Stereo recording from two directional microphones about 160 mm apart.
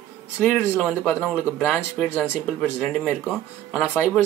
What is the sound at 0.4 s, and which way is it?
Speech, 10° left (ahead or behind).